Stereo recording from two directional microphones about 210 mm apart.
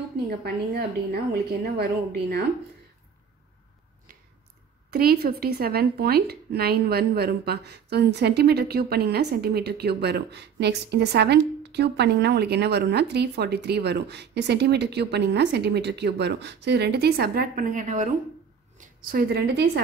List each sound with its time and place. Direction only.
0.4 s speech: 50° right (ahead or behind)
4.9 s a woman's voice: 45° right (ahead or behind)